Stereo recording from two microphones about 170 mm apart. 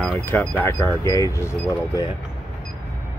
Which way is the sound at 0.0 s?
10° left (ahead or behind).